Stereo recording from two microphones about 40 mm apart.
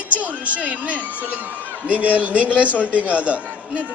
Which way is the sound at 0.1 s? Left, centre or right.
Right.